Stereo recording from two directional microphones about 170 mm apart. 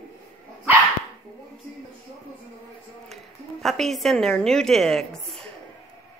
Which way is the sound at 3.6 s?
Centre (ahead or behind).